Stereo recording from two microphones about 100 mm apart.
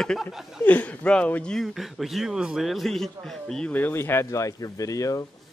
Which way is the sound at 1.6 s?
Centre (ahead or behind).